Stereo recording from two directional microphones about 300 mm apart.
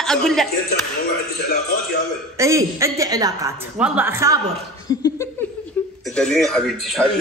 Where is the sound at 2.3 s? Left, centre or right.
Centre.